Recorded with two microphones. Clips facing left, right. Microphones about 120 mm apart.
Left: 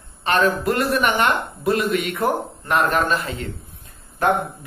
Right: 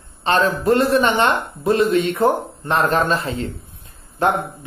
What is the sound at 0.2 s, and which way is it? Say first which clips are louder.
A man's voice: right 1 dB; 30° right (ahead or behind).